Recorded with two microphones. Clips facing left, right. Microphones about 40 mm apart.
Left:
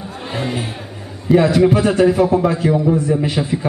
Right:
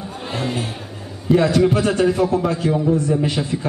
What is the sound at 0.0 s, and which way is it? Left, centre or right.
Music, centre.